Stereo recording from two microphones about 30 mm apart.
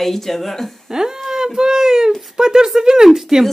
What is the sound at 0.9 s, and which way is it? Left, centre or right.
Speech, centre.